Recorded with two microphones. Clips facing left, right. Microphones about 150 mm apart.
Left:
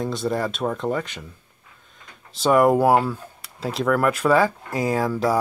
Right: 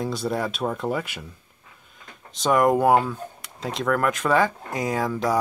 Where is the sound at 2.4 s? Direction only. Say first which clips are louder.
Left 2 dB; 5° left (ahead or behind).